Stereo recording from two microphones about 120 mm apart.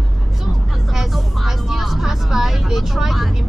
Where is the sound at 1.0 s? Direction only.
Centre (ahead or behind).